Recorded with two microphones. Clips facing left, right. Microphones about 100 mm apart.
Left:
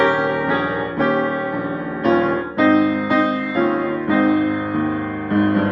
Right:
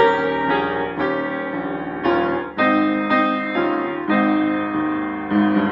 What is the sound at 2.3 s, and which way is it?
Music, 25° left (ahead or behind).